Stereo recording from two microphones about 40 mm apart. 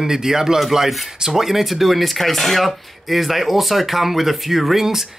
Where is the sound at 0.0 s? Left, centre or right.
Centre.